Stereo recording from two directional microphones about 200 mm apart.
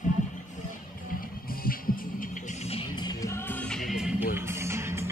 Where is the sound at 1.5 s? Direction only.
45° left (ahead or behind).